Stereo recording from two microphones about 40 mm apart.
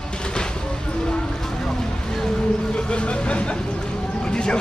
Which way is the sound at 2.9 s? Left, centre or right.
Left.